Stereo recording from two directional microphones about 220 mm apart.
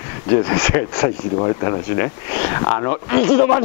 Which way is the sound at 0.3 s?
15° left (ahead or behind).